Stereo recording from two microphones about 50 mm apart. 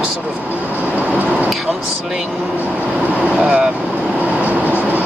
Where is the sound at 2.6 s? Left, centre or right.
Right.